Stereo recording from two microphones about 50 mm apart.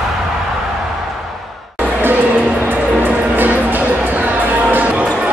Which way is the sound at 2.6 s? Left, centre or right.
Right.